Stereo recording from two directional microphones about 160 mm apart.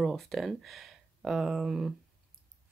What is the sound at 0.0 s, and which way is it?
Speech, centre (ahead or behind).